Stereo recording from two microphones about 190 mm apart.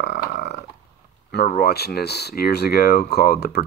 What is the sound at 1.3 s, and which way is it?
Speech, 60° left (ahead or behind).